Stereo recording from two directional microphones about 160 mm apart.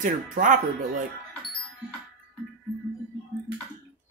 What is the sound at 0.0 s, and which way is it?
Speech, 55° right (ahead or behind).